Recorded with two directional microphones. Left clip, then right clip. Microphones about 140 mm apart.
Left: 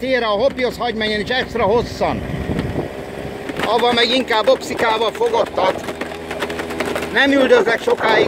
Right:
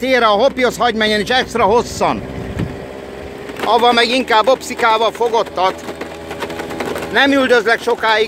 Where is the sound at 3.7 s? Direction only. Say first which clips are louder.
Right 4 dB; 40° right (ahead or behind).